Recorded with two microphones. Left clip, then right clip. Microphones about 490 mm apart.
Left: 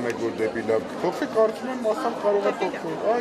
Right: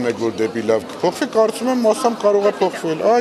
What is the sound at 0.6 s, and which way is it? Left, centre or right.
Speech, right.